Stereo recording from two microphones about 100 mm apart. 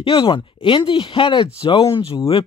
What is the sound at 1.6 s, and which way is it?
Speech, 70° left (ahead or behind).